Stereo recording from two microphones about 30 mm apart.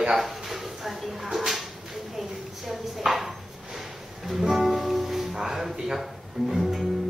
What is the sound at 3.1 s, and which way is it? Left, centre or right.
Music, centre.